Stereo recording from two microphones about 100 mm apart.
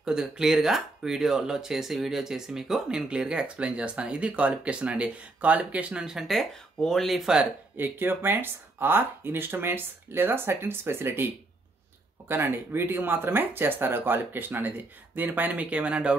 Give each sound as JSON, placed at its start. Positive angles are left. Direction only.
{"t": 0.0, "sound": "speech", "side_deg": -5}
{"t": 7.7, "sound": "speech", "side_deg": -20}
{"t": 12.3, "sound": "speech", "side_deg": -25}